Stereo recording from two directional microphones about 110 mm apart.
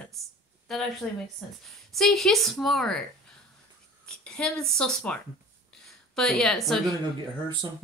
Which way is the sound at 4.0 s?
10° left (ahead or behind).